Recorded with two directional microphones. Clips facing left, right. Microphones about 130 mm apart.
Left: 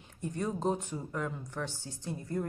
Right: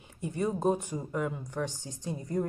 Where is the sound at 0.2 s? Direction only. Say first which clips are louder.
Right 4 dB; 10° right (ahead or behind).